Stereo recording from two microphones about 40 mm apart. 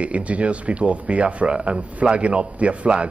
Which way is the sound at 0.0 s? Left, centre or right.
Right.